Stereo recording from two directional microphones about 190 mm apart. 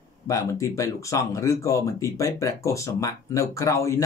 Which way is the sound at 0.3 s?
15° left (ahead or behind).